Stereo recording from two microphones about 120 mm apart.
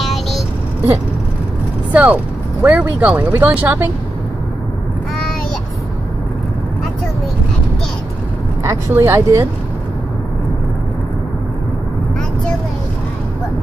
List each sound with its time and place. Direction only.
0.0 s vehicle: centre (ahead or behind)
1.9 s speech: 15° right (ahead or behind)
8.6 s speech: 25° right (ahead or behind)